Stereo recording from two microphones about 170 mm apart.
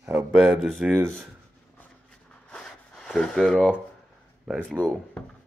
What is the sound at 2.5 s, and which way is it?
Zipper, 5° left (ahead or behind).